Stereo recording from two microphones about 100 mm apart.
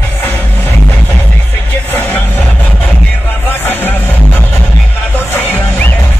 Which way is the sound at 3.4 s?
20° left (ahead or behind).